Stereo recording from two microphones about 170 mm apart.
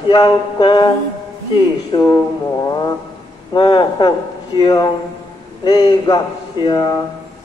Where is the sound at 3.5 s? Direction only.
25° left (ahead or behind).